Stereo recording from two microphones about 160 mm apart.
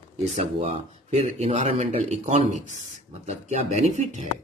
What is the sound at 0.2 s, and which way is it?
Speech, 45° right (ahead or behind).